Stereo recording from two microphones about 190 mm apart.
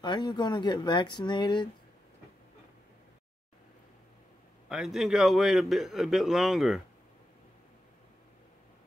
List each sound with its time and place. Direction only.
0.0 s speech: 25° left (ahead or behind)
4.6 s a man's voice: 5° right (ahead or behind)